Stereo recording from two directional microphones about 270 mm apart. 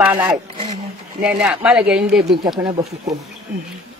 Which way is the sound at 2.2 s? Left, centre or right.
Centre.